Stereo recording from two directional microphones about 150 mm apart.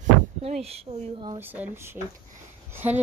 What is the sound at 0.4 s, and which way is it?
Speech, 45° right (ahead or behind).